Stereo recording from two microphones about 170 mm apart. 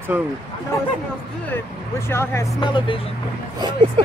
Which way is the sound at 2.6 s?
30° left (ahead or behind).